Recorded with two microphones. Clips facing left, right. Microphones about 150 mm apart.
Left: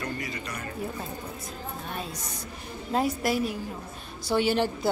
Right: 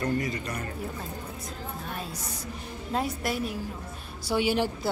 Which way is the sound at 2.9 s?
Centre (ahead or behind).